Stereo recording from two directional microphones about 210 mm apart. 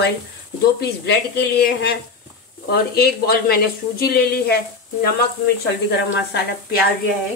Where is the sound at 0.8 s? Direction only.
50° left (ahead or behind).